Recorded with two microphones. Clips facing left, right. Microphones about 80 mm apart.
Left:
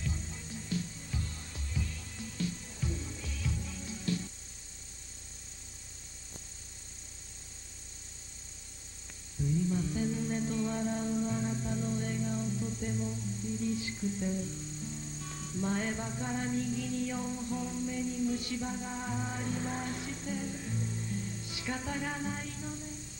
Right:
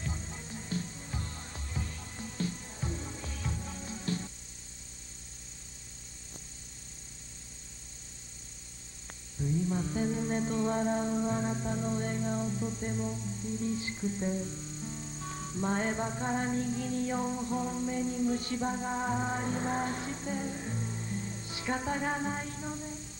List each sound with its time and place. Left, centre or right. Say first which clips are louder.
0.0 s music: even; right
9.7 s music: right 1 dB; right